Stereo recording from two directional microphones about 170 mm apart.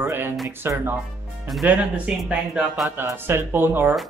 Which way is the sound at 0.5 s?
15° right (ahead or behind).